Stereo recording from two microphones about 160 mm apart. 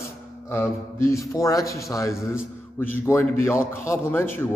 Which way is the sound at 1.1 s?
20° left (ahead or behind).